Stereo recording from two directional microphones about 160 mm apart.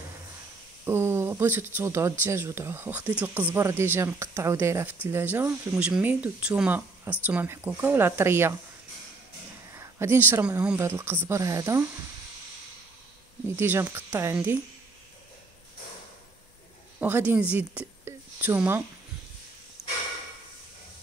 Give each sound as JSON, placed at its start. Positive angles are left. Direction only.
{"t": 0.8, "sound": "speech", "side_deg": -15}
{"t": 9.8, "sound": "speech", "side_deg": -15}
{"t": 13.6, "sound": "speech", "side_deg": -15}
{"t": 17.0, "sound": "speech", "side_deg": -10}